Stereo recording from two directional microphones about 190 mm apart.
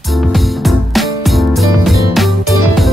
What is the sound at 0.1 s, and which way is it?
Music, centre (ahead or behind).